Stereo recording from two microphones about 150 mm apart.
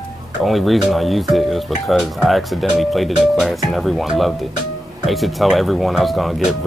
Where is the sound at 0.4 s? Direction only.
Centre (ahead or behind).